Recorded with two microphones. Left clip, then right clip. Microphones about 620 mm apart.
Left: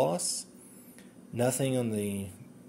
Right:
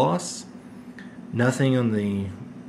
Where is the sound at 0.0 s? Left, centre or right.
Left.